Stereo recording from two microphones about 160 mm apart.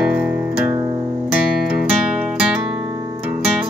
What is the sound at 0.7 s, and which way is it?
Music, 25° right (ahead or behind).